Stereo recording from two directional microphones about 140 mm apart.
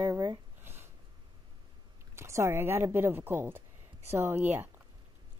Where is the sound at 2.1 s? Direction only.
20° right (ahead or behind).